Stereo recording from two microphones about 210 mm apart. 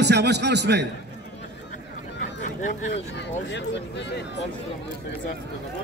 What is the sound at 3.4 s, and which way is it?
Speech, 55° left (ahead or behind).